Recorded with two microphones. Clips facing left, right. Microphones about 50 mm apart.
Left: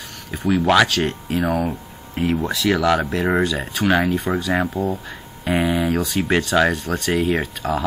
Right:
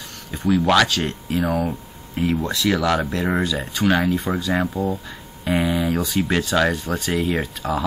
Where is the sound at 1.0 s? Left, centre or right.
Centre.